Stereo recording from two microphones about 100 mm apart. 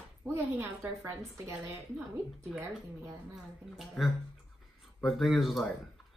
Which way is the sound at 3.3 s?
5° right (ahead or behind).